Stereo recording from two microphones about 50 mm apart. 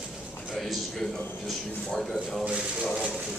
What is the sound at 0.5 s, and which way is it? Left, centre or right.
A man's voice, centre.